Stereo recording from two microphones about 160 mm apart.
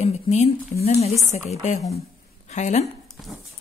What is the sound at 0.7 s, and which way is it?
A woman's voice, 45° left (ahead or behind).